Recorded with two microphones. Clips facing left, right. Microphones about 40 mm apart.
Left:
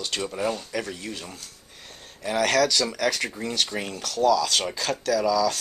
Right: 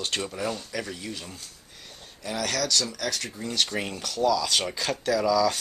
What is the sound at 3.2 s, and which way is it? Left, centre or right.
Speech, left.